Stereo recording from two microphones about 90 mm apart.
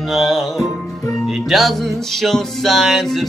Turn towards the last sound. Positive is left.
turn(degrees=0)  # may be behind; listen again after turning